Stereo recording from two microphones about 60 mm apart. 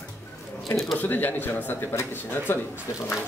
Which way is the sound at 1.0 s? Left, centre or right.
Left.